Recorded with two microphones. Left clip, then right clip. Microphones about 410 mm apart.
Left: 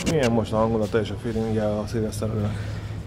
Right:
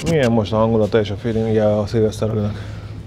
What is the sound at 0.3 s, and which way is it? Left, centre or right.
Speech, right.